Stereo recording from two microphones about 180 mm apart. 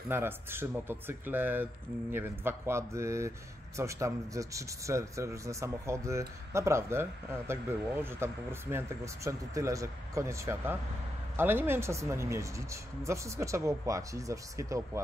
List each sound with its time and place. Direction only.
0.1 s speech: 10° right (ahead or behind)